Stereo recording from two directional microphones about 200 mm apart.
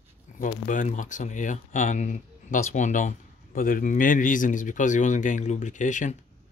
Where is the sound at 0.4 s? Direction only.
40° left (ahead or behind).